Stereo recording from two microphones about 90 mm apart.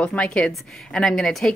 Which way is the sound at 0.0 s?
15° left (ahead or behind).